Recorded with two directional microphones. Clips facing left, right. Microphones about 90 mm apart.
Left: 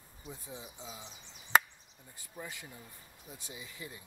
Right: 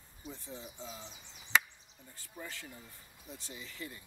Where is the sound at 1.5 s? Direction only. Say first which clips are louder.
Left 4 dB; 50° left (ahead or behind).